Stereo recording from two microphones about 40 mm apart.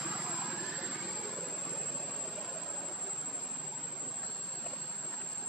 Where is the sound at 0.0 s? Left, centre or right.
Right.